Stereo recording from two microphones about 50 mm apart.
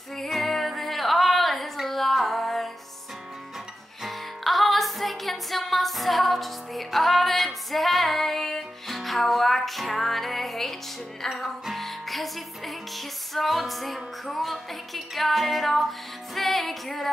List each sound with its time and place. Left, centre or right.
0.1 s music: centre
4.0 s music: centre